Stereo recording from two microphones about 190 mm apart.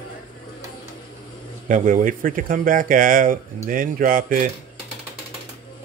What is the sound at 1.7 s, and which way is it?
Speech, 45° right (ahead or behind).